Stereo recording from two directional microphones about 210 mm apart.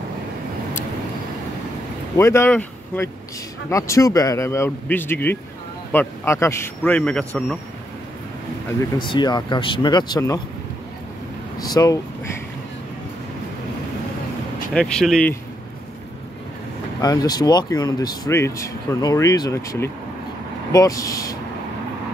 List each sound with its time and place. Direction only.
2.1 s speech: 15° left (ahead or behind)
8.9 s speech: 20° left (ahead or behind)
11.5 s speech: 20° left (ahead or behind)
14.7 s speech: 5° left (ahead or behind)
17.0 s speech: 20° left (ahead or behind)